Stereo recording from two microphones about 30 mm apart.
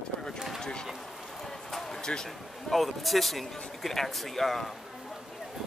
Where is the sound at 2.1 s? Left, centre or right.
Left.